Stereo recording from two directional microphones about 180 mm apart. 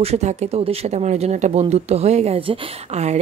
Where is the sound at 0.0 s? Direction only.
35° right (ahead or behind).